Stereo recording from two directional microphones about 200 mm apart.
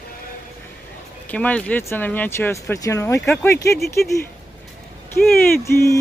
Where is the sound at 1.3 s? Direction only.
5° left (ahead or behind).